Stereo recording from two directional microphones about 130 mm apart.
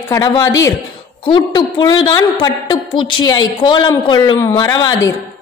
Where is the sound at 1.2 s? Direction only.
40° left (ahead or behind).